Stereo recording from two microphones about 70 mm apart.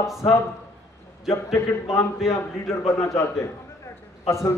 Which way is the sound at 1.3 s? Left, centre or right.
Left.